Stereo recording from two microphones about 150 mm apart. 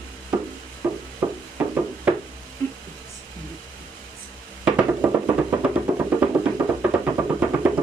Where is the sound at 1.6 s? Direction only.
10° right (ahead or behind).